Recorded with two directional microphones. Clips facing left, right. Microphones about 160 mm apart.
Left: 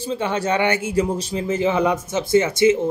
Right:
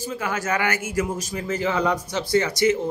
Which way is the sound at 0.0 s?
30° left (ahead or behind).